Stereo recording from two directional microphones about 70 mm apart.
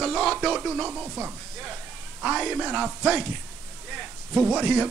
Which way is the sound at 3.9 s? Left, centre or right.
Centre.